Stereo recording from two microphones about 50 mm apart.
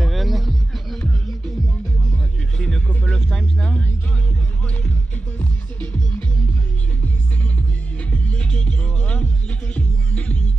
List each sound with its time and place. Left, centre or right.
0.0 s music: centre
3.1 s music: centre
5.4 s music: left
8.1 s music: left